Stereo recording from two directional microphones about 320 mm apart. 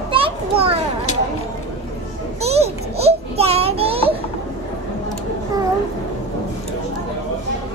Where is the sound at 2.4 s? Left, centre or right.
Centre.